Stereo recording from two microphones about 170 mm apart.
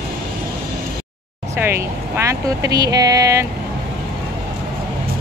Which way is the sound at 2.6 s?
20° right (ahead or behind).